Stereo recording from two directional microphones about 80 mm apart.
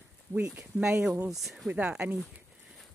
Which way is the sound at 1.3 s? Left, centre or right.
Centre.